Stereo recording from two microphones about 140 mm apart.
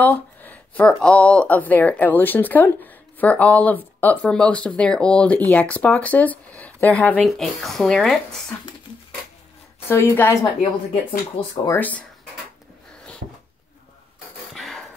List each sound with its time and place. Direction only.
0.0 s speech: 10° left (ahead or behind)
9.8 s speech: 15° left (ahead or behind)
10.6 s speech: 35° left (ahead or behind)
11.7 s speech: 10° left (ahead or behind)
14.5 s a sound: centre (ahead or behind)